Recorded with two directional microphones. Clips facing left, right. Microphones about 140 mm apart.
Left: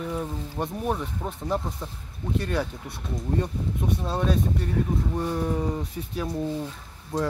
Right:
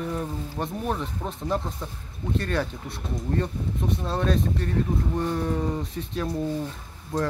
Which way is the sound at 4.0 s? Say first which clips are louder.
Right 1 dB; 10° left (ahead or behind).